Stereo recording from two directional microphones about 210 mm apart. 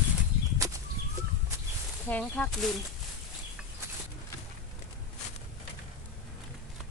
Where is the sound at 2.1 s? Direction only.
5° left (ahead or behind).